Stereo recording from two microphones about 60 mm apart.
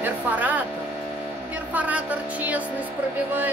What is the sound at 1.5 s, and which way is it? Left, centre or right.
A woman's voice, right.